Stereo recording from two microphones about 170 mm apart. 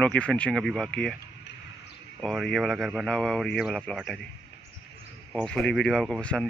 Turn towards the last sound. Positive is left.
turn(degrees=5)  # may be behind; listen again after turning